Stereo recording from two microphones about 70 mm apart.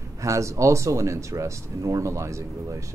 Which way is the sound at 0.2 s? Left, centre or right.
Right.